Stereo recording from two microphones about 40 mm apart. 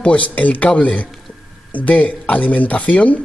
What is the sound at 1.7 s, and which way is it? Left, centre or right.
Speech, left.